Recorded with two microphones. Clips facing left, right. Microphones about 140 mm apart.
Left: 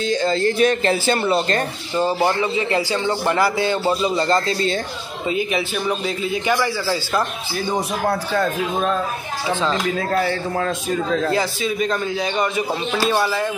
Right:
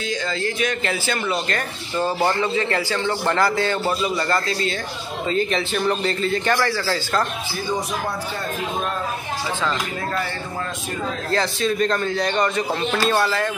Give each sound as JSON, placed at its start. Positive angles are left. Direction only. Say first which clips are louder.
{"t": 0.0, "sound": "a man's voice", "louder": "left 6 dB", "side_deg": 30}
{"t": 5.3, "sound": "a man's voice", "louder": "even", "side_deg": 10}
{"t": 11.3, "sound": "a man's voice", "louder": "even", "side_deg": 5}